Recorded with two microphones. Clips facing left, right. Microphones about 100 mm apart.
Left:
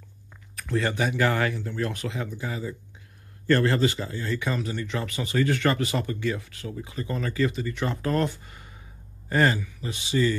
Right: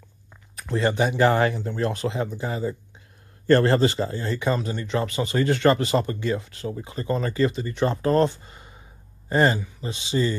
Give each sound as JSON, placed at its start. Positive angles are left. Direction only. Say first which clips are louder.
{"t": 0.6, "sound": "speech", "louder": "right 4 dB", "side_deg": -25}